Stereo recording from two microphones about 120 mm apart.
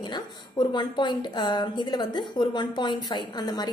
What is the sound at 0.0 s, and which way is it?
A woman's voice, 40° left (ahead or behind).